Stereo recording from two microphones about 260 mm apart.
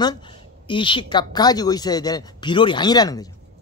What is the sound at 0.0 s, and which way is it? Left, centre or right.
Speech, centre.